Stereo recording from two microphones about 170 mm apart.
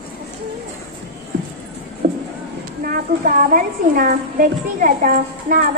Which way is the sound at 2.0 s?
45° right (ahead or behind).